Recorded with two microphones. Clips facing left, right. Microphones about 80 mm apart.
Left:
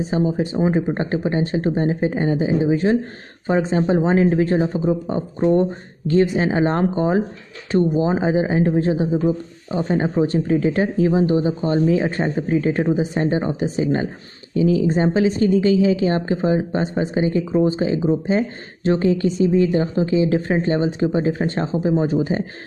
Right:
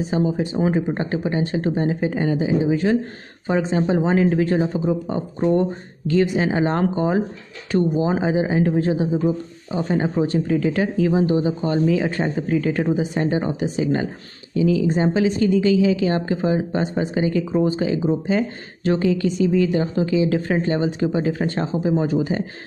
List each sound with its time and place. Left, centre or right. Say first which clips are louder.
0.1 s a woman's voice: left 1 dB; left